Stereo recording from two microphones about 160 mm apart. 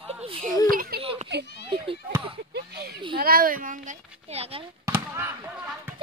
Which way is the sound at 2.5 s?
80° right.